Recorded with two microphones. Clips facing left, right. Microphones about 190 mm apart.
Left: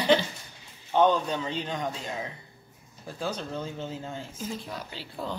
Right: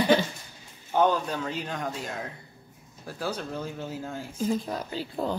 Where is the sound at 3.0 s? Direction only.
10° right (ahead or behind).